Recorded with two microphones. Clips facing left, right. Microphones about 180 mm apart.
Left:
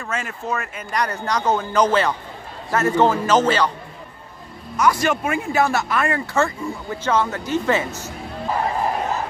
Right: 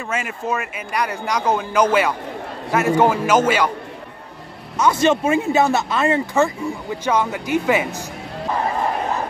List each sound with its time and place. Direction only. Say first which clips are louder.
0.1 s speech: right 2 dB; 10° right (ahead or behind)
4.7 s speech: right 3 dB; 25° right (ahead or behind)